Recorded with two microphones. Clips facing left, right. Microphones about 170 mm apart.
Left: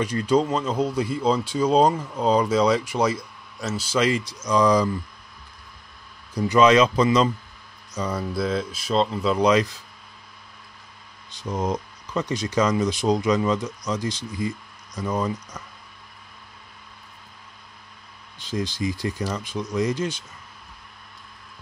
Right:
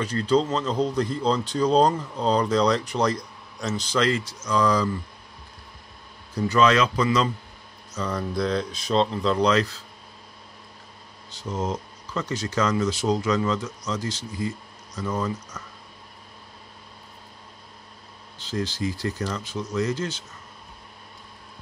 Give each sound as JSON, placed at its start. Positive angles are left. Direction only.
{"t": 0.0, "sound": "speech", "side_deg": 10}
{"t": 6.3, "sound": "speech", "side_deg": 15}
{"t": 11.3, "sound": "speech", "side_deg": 15}
{"t": 18.4, "sound": "speech", "side_deg": 15}